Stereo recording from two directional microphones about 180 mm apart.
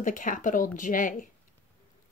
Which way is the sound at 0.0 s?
50° left (ahead or behind).